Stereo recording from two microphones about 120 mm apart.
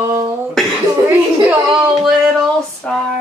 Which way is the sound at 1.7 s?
5° right (ahead or behind).